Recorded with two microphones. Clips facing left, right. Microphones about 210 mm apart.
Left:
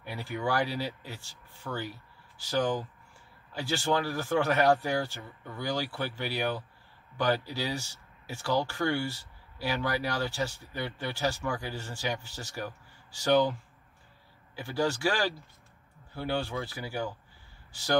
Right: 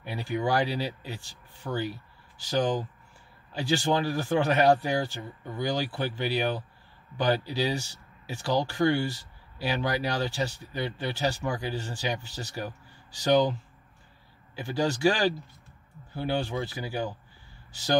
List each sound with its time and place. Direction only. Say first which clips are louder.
0.0 s speech: right 4 dB; 15° right (ahead or behind)
14.6 s speech: right 4 dB; 15° right (ahead or behind)